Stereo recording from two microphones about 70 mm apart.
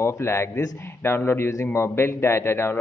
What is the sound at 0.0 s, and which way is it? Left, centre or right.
A man's voice, left.